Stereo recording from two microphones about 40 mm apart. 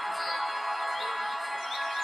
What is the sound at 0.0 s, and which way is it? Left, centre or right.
Music, centre.